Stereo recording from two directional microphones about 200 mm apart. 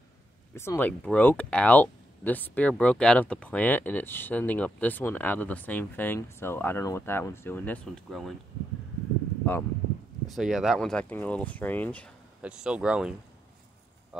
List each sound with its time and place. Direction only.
0.6 s speech: 10° left (ahead or behind)
9.4 s speech: 10° left (ahead or behind)
10.3 s speech: centre (ahead or behind)
12.4 s speech: 5° right (ahead or behind)